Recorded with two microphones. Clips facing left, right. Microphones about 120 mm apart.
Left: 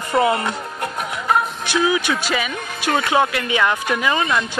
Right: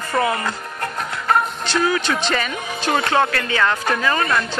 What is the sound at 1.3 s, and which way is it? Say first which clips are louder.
Music: right 1 dB; 10° left (ahead or behind).